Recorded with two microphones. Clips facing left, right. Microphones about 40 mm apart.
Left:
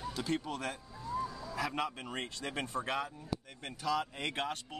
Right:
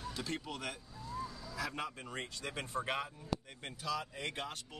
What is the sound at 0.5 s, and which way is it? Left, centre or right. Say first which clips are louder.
Speech: left 4 dB; left.